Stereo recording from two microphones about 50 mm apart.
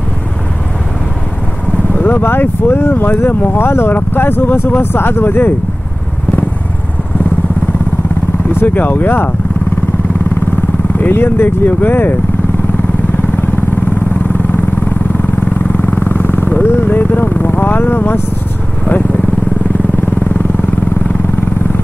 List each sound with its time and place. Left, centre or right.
2.0 s speech: left
8.5 s speech: left
11.0 s speech: left
15.7 s vehicle: left
16.6 s vehicle: left
16.9 s vehicle: left